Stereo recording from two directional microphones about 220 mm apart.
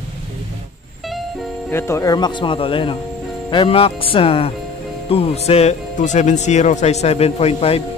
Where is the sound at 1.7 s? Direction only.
10° left (ahead or behind); by 7.8 s 25° left (ahead or behind).